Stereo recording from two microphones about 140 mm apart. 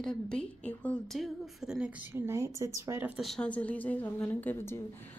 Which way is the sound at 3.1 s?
Centre (ahead or behind).